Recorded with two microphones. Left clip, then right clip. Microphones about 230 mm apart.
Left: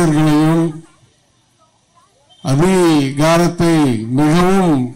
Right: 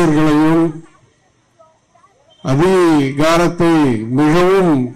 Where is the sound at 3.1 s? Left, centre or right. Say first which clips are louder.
Even; left.